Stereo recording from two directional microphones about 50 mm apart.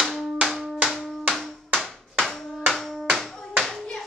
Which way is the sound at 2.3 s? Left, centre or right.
Centre.